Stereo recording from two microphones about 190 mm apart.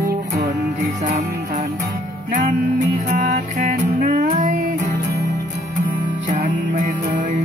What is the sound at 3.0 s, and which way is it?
Music, 40° right (ahead or behind).